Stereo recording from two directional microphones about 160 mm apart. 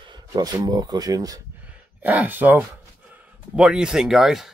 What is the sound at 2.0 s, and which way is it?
Speech, 10° right (ahead or behind).